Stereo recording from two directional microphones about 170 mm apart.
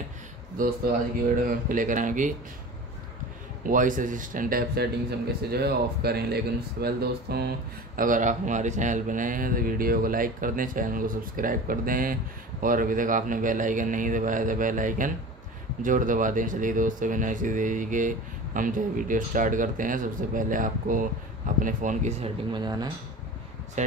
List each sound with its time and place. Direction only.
0.6 s speech: 55° right (ahead or behind)
3.6 s speech: 50° right (ahead or behind)
5.5 s speech: 70° right (ahead or behind); by 22.3 s 45° right (ahead or behind)
22.5 s speech: 25° right (ahead or behind)